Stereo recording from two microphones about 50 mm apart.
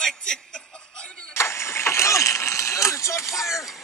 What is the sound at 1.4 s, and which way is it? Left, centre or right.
Vehicle, left.